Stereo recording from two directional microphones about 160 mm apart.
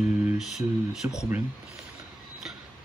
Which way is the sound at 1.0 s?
15° right (ahead or behind).